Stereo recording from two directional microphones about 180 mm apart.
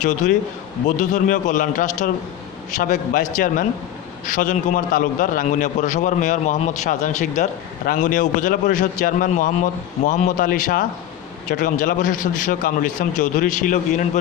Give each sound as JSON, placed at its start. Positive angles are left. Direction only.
{"t": 0.0, "sound": "a man's voice", "side_deg": 45}